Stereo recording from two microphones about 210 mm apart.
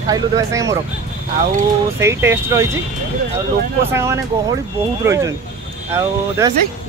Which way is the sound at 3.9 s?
10° right (ahead or behind).